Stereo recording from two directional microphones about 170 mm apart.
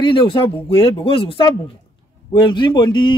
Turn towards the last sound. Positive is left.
turn(degrees=25)  # may be behind; listen again after turning